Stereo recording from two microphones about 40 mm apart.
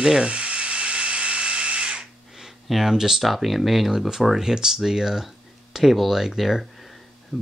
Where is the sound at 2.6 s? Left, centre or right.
Centre.